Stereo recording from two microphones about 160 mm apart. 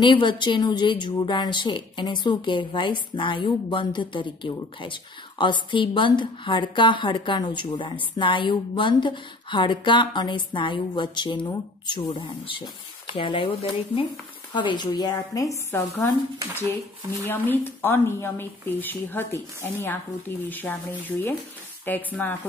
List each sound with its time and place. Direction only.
0.0 s a woman's voice: 30° left (ahead or behind)
17.3 s speech: 15° left (ahead or behind)